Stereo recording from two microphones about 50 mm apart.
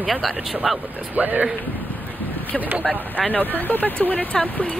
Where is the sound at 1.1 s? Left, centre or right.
Right.